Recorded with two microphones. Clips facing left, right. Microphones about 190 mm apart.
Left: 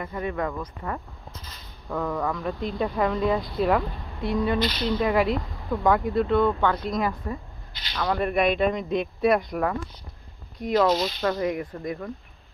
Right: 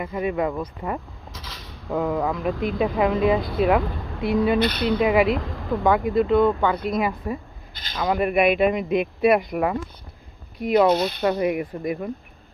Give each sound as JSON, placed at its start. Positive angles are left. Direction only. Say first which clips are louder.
{"t": 0.0, "sound": "speech", "louder": "right 5 dB", "side_deg": -10}
{"t": 1.3, "sound": "a sound", "louder": "right 8 dB", "side_deg": -90}
{"t": 1.9, "sound": "speech", "louder": "right 4 dB", "side_deg": -10}
{"t": 2.5, "sound": "speech", "louder": "right 5 dB", "side_deg": -90}
{"t": 3.0, "sound": "speech", "louder": "right 4 dB", "side_deg": -5}
{"t": 4.6, "sound": "speech", "louder": "right 4 dB", "side_deg": -60}
{"t": 4.8, "sound": "speech", "louder": "right 3 dB", "side_deg": -10}